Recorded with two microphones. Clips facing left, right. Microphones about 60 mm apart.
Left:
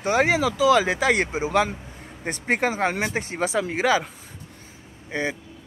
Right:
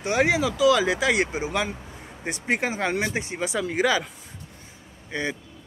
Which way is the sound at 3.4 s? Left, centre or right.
Left.